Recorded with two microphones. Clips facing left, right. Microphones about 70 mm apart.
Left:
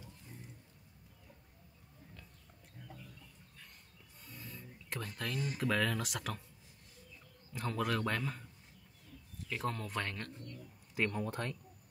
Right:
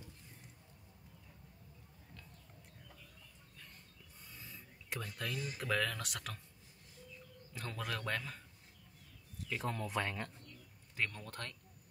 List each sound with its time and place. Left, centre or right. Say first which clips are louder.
4.3 s a sound: left 5 dB; centre
5.6 s speech: left 3 dB; centre
7.5 s speech: left 7 dB; centre
9.5 s speech: left 1 dB; centre
11.1 s speech: left 9 dB; centre